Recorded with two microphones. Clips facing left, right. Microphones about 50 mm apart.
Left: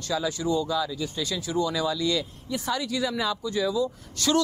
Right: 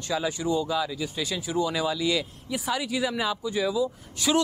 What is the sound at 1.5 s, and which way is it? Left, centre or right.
Speech, right.